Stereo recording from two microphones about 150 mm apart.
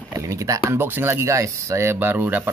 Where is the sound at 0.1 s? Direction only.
20° right (ahead or behind).